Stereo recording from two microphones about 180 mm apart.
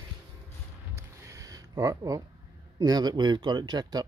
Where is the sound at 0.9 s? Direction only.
15° right (ahead or behind).